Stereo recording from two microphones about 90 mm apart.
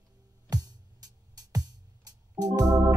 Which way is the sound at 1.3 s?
45° right (ahead or behind).